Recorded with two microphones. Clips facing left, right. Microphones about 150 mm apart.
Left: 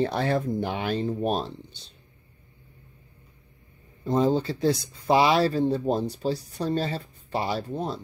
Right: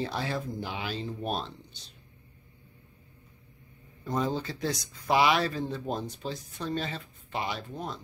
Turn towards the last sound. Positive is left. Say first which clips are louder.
# left 7 dB
turn(degrees=35)  # may be behind; listen again after turning